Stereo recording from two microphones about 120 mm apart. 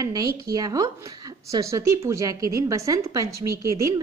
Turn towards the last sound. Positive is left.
turn(degrees=-25)  # may be behind; listen again after turning